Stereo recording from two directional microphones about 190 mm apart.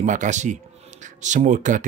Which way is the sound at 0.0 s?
40° right (ahead or behind).